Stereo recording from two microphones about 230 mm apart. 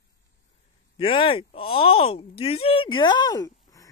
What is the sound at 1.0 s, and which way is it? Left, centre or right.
Speech, left.